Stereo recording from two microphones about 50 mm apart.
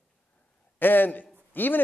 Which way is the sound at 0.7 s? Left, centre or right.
Left.